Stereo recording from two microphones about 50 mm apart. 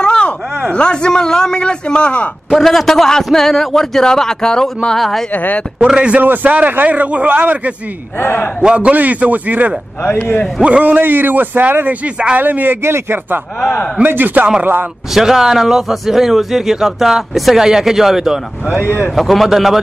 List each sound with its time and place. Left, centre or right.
0.0 s a sound: centre
0.7 s a man's voice: centre
2.5 s a man's voice: centre
5.3 s speech: left
5.9 s a man's voice: right
6.2 s a man's voice: right
8.2 s a man's voice: left
8.7 s a man's voice: right
10.0 s speech: left
10.6 s a man's voice: right
12.4 s a man's voice: right
12.8 s speech: right
14.0 s a man's voice: right
15.1 s a man's voice: centre